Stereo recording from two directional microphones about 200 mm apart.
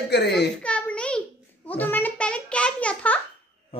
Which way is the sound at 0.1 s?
55° left (ahead or behind).